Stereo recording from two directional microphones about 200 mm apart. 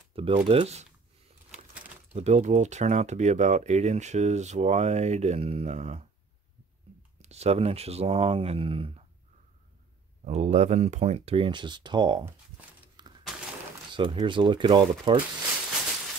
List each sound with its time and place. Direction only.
0.1 s speech: 30° right (ahead or behind)
2.1 s speech: 35° right (ahead or behind)
7.2 s speech: 30° right (ahead or behind)
10.2 s speech: 35° right (ahead or behind)
13.0 s shatter: 20° right (ahead or behind)
13.9 s speech: 25° right (ahead or behind)